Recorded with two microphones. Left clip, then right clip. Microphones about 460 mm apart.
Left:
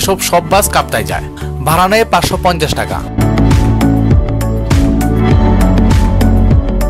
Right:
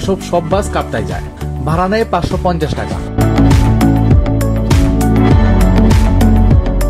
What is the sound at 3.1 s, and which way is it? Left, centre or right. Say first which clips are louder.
Music: right 2 dB; centre.